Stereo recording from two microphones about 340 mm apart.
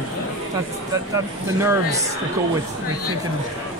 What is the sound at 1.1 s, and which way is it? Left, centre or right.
Speech, centre.